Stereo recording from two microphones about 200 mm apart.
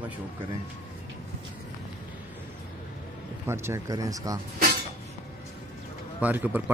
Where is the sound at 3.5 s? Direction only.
15° right (ahead or behind).